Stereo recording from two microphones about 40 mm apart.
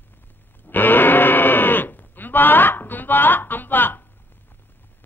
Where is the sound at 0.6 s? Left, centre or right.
Left.